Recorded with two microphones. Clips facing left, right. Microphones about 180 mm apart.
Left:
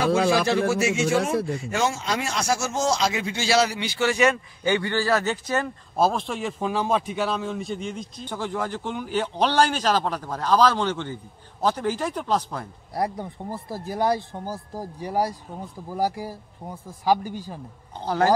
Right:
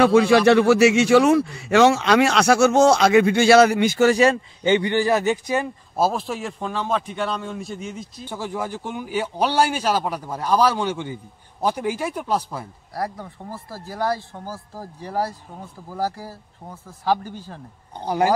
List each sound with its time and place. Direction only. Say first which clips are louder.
0.0 s a man's voice: right 6 dB; 65° right (ahead or behind); by 4.4 s 35° right (ahead or behind)
4.6 s speech: right 4 dB; 20° right (ahead or behind)
12.9 s speech: left 2 dB; 20° left (ahead or behind)
18.0 s speech: right 1 dB; 15° right (ahead or behind)